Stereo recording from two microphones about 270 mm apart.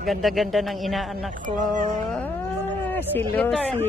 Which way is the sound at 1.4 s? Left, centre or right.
Right.